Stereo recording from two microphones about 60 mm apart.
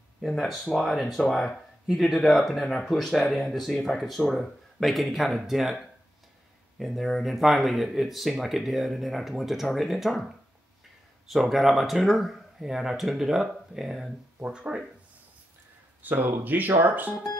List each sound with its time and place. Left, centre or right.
0.2 s speech: centre
14.4 s speech: centre
16.0 s speech: right